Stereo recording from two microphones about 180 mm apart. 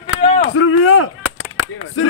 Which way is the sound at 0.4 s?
90° left.